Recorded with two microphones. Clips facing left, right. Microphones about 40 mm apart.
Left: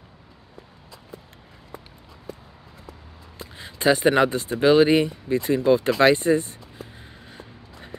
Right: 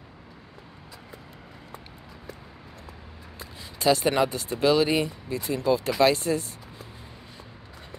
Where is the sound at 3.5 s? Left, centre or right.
Left.